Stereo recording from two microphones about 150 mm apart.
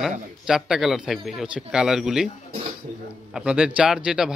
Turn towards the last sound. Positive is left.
turn(degrees=-5)  # may be behind; listen again after turning